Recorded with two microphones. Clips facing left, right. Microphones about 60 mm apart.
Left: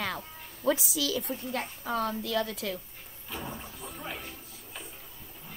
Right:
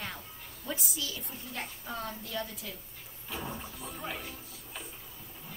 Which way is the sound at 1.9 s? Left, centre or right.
Left.